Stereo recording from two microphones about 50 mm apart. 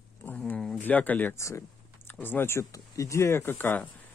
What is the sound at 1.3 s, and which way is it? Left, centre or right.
Speech, left.